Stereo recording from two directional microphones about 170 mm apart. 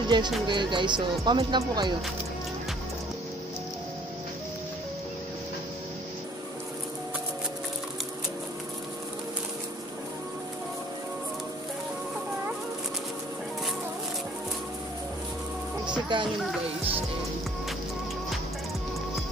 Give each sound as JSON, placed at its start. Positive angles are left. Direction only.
{"t": 0.1, "sound": "speech", "side_deg": -25}
{"t": 16.1, "sound": "speech", "side_deg": -30}